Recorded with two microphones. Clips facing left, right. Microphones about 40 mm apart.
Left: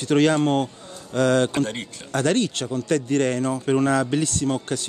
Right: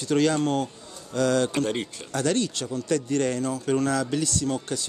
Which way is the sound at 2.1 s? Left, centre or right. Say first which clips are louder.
Left 4 dB; left.